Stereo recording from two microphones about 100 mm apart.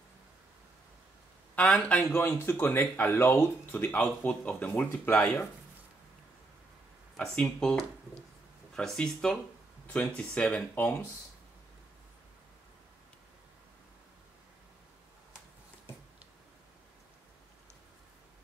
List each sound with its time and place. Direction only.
1.5 s speech: 10° left (ahead or behind)
2.1 s speech: 25° left (ahead or behind)
7.2 s speech: 5° left (ahead or behind)